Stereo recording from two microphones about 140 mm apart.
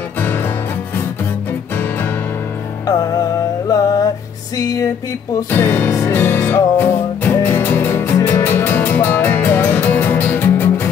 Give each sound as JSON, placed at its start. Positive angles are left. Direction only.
{"t": 2.9, "sound": "music", "side_deg": 25}
{"t": 5.5, "sound": "music", "side_deg": 15}